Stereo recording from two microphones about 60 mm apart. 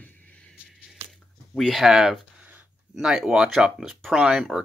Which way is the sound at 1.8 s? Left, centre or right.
Centre.